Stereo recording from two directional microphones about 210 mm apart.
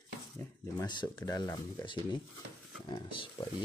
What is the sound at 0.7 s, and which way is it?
Speech, 20° left (ahead or behind).